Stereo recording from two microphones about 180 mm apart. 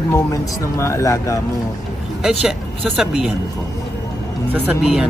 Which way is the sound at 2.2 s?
5° right (ahead or behind).